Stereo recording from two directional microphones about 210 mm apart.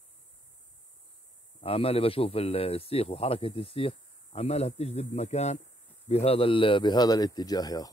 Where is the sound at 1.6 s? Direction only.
25° left (ahead or behind).